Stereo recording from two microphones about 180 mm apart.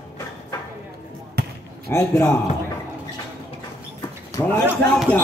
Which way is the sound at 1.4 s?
65° right (ahead or behind).